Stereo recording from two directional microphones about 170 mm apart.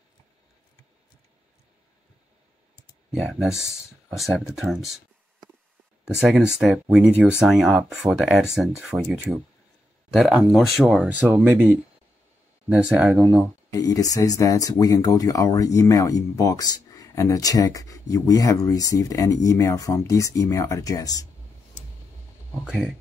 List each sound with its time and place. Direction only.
3.1 s speech: centre (ahead or behind)
6.0 s speech: 5° right (ahead or behind)
13.7 s speech: 20° left (ahead or behind)
22.7 s speech: 5° right (ahead or behind)